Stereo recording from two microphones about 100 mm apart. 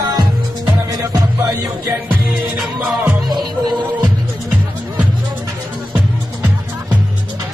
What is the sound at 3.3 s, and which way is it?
Music, 45° right (ahead or behind).